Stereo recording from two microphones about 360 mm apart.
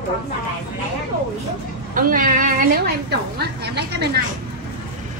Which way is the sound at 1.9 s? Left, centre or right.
Right.